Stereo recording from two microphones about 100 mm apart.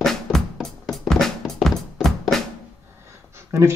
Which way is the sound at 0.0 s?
5° left (ahead or behind).